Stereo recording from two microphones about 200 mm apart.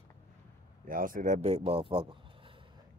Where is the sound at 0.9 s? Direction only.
45° right (ahead or behind); by 2.5 s 25° right (ahead or behind).